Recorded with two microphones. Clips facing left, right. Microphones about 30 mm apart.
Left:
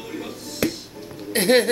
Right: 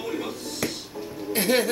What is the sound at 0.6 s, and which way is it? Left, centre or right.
Music, left.